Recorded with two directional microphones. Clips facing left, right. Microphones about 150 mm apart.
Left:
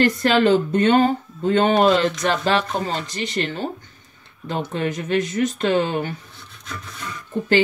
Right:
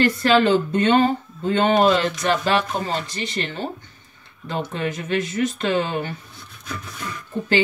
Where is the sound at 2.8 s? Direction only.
40° left (ahead or behind).